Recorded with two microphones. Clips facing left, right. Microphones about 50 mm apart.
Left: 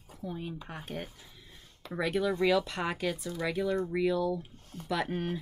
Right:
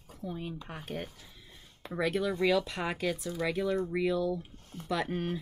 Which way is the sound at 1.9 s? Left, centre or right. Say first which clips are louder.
Left 1 dB; centre.